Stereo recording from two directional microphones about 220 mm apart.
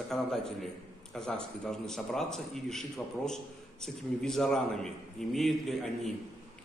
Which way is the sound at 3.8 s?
Centre (ahead or behind).